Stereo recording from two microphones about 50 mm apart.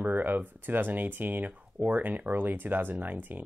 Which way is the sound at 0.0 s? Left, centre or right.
Right.